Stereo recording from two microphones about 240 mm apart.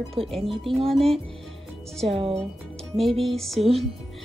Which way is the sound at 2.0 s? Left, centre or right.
Right.